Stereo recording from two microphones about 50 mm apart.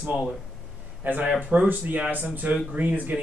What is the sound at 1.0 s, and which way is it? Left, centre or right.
Speech, right.